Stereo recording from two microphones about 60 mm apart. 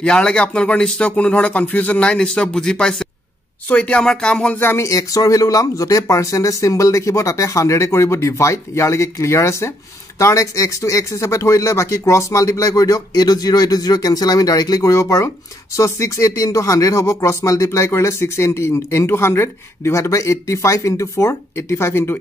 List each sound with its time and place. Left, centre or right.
0.0 s speech: centre
3.6 s speech: left
4.7 s speech: left
10.1 s speech: left